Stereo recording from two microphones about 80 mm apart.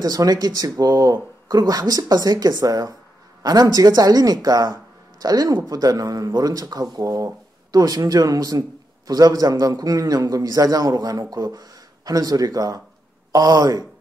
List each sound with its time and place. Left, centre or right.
0.0 s speech: right